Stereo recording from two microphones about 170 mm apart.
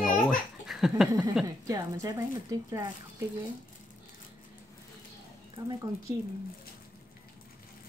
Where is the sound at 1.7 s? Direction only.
20° right (ahead or behind).